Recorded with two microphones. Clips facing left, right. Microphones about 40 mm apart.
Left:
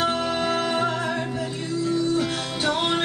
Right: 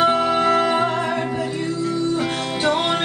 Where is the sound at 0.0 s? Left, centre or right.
Centre.